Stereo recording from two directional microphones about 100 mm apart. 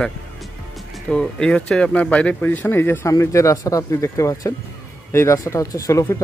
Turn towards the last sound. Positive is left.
turn(degrees=30)  # may be behind; listen again after turning